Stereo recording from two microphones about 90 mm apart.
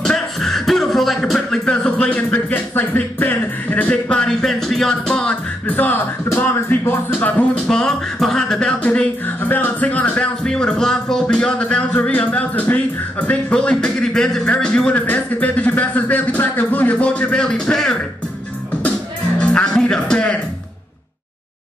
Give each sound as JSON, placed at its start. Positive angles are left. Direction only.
{"t": 0.0, "sound": "a sound", "side_deg": 5}
{"t": 1.7, "sound": "speech", "side_deg": 15}
{"t": 6.2, "sound": "speech", "side_deg": 25}
{"t": 19.4, "sound": "music", "side_deg": 10}